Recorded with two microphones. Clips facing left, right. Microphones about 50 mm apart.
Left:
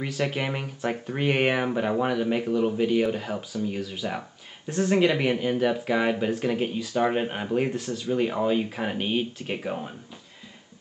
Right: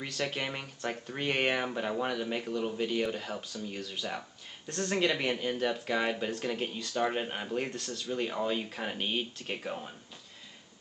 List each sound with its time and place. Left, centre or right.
0.0 s speech: centre